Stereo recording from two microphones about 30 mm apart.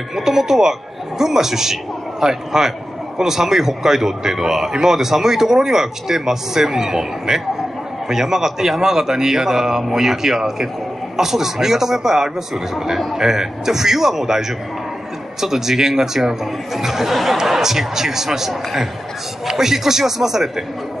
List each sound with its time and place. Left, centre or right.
0.1 s speech: centre
15.4 s speech: centre
17.4 s speech: centre